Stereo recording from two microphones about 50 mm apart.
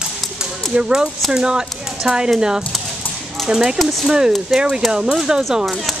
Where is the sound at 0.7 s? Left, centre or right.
Centre.